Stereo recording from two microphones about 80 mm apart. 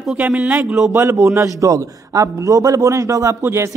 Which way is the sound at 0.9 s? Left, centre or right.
Right.